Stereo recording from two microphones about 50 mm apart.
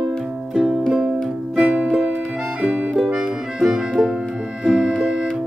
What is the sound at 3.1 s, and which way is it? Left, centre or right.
Music, centre.